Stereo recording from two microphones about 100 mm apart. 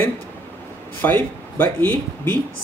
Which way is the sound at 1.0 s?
20° left (ahead or behind).